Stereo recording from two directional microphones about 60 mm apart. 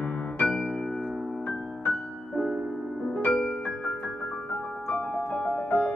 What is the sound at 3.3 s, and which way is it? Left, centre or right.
Music, left.